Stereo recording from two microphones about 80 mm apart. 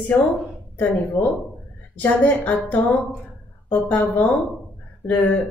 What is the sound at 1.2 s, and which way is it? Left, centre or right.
A woman's voice, centre.